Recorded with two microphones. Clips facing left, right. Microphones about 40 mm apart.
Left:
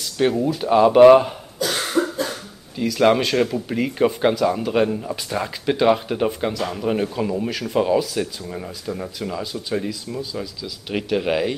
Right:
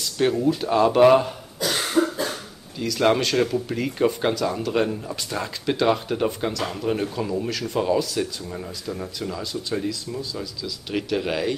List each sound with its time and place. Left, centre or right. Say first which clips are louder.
0.0 s a sound: left 2 dB; centre
0.6 s speech: left 7 dB; centre
2.0 s cough: even; centre
2.8 s speech: left 3 dB; centre